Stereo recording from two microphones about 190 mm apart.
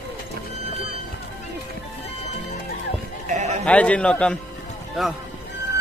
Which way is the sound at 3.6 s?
5° left (ahead or behind).